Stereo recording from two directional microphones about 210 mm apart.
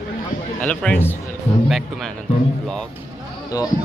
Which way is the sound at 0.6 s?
5° left (ahead or behind).